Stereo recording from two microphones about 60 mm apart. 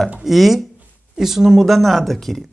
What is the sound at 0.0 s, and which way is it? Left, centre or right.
Speech, centre.